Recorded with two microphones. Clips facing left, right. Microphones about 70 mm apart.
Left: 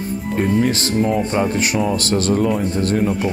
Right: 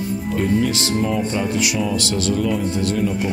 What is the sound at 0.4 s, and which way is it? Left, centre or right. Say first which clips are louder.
Speech: left 2 dB; left.